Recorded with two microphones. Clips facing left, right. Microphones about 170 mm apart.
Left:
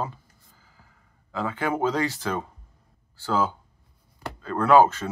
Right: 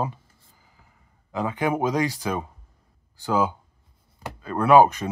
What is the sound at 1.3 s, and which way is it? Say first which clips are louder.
Speech: right 2 dB; 15° right (ahead or behind).